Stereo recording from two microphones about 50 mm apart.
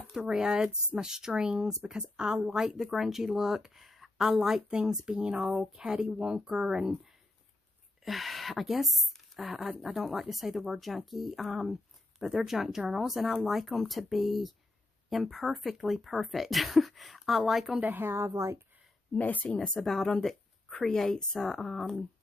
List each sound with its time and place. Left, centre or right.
0.2 s speech: centre
8.0 s speech: centre
17.8 s a woman's voice: right
18.1 s a woman's voice: right
19.1 s speech: left
19.8 s speech: centre